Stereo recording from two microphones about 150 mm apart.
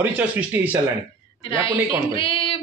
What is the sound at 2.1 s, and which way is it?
Speech, 35° left (ahead or behind).